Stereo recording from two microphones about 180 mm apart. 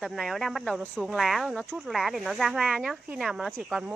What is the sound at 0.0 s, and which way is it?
Speech, centre (ahead or behind).